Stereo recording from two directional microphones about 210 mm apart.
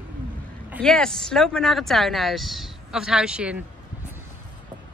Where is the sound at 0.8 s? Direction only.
5° left (ahead or behind).